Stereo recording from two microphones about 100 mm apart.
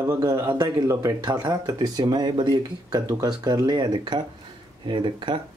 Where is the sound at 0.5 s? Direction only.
45° right (ahead or behind).